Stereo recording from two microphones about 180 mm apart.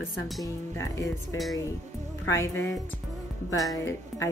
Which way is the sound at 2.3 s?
15° left (ahead or behind).